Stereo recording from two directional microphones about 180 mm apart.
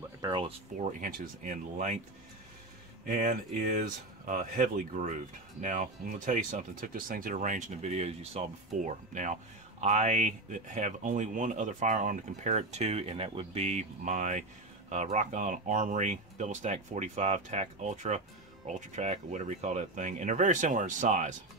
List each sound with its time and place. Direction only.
0.2 s speech: 25° right (ahead or behind)
0.7 s speech: 50° right (ahead or behind)
3.1 s speech: 45° right (ahead or behind)